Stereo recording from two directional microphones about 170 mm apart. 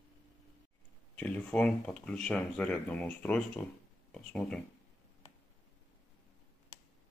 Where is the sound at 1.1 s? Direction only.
10° left (ahead or behind).